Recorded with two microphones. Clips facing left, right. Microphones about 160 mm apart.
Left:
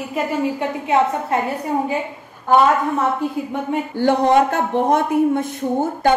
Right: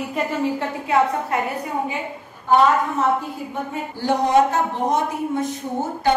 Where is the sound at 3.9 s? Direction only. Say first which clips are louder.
Left 2 dB; 60° left (ahead or behind).